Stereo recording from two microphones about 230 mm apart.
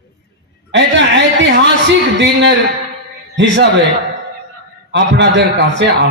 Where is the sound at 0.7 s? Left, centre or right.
Right.